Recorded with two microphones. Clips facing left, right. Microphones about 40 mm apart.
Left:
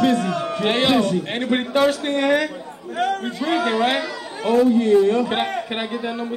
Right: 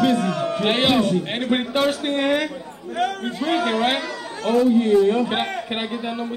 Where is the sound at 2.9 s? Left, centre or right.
Centre.